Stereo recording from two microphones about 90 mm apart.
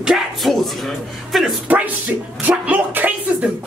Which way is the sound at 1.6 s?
20° right (ahead or behind).